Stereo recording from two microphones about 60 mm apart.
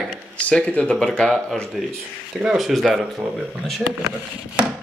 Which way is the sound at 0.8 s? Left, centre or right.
Centre.